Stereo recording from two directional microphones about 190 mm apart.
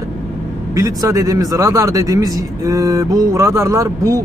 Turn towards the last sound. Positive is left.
turn(degrees=-15)  # may be behind; listen again after turning